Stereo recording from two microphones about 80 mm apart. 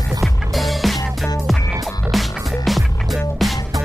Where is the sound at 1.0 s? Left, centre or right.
Left.